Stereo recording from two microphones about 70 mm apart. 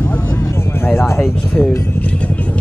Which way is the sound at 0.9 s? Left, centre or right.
Left.